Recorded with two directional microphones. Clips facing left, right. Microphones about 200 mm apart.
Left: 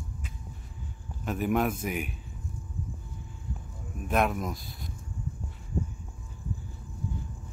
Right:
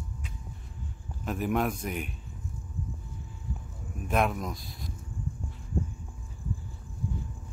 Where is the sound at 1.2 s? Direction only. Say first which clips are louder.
Left 1 dB; centre (ahead or behind).